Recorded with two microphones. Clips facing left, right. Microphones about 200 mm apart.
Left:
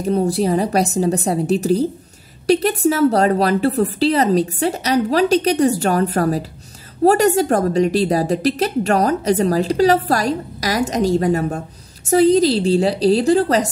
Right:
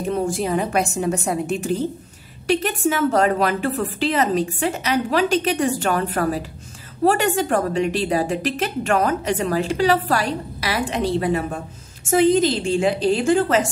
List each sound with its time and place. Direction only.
0.0 s a woman's voice: 35° left (ahead or behind)